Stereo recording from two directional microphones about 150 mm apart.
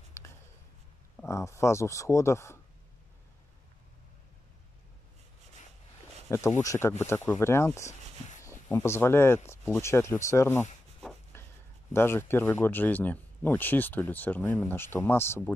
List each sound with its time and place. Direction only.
0.2 s a sound: 20° left (ahead or behind)
1.2 s speech: 20° left (ahead or behind)
6.2 s speech: 20° left (ahead or behind)
11.3 s writing: 15° left (ahead or behind)
11.9 s speech: 15° left (ahead or behind)